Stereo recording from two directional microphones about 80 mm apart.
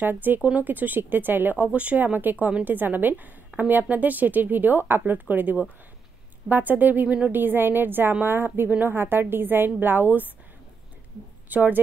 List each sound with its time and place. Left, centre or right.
0.0 s speech: right
11.4 s a woman's voice: right